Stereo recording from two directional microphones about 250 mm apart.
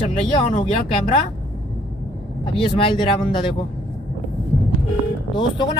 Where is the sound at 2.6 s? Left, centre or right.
Left.